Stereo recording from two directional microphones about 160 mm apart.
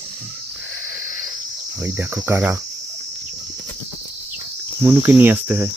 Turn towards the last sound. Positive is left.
turn(degrees=-15)  # may be behind; listen again after turning